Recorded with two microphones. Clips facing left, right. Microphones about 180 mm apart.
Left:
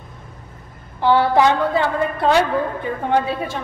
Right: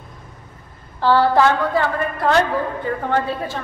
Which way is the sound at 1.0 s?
15° left (ahead or behind).